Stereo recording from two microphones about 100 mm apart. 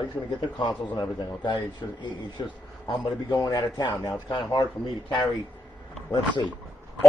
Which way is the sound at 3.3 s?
35° left (ahead or behind).